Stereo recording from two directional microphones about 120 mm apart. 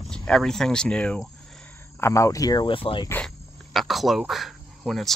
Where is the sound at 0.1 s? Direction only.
5° left (ahead or behind).